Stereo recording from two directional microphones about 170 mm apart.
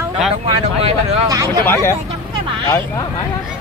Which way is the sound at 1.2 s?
20° right (ahead or behind).